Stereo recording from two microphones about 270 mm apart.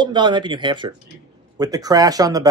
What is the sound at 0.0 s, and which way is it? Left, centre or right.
Speech, centre.